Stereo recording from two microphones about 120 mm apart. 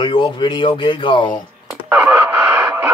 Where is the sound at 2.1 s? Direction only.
20° right (ahead or behind).